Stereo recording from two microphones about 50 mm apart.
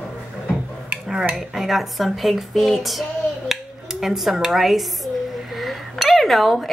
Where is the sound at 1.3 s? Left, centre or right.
Centre.